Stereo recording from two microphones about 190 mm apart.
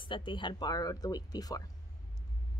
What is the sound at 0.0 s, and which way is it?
A woman's voice, 25° left (ahead or behind).